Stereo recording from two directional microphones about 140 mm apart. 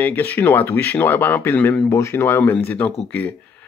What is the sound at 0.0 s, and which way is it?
Speech, 10° left (ahead or behind).